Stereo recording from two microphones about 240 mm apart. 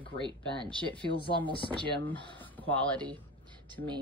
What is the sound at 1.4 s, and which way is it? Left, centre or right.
Speech, left.